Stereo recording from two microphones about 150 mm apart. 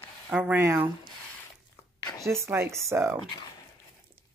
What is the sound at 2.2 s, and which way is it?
Speech, 20° right (ahead or behind).